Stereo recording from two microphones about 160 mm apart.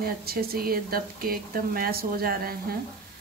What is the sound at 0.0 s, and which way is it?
Speech, 70° right (ahead or behind).